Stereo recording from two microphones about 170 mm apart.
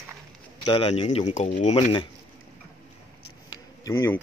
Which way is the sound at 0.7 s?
35° left (ahead or behind).